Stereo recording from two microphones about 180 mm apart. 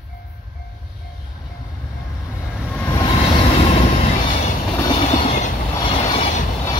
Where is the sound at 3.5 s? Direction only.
35° left (ahead or behind).